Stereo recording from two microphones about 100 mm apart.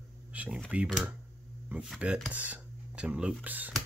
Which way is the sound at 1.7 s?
20° right (ahead or behind).